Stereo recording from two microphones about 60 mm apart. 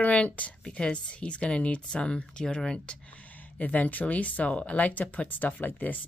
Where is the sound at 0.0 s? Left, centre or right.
Left.